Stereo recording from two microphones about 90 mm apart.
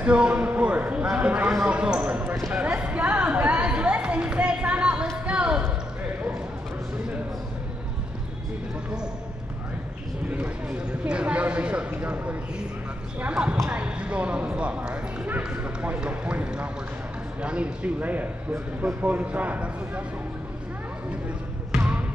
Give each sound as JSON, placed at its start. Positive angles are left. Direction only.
{"t": 0.0, "sound": "a man's voice", "side_deg": -15}
{"t": 1.6, "sound": "basketball bounce", "side_deg": -15}
{"t": 2.5, "sound": "a sound", "side_deg": -15}
{"t": 10.3, "sound": "a sound", "side_deg": -10}
{"t": 13.2, "sound": "speech", "side_deg": -15}
{"t": 21.7, "sound": "basketball bounce", "side_deg": -15}